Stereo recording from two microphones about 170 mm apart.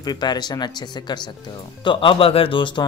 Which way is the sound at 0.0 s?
25° left (ahead or behind).